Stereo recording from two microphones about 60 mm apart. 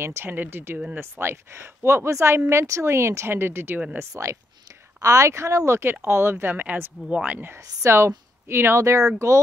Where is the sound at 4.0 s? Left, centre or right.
Right.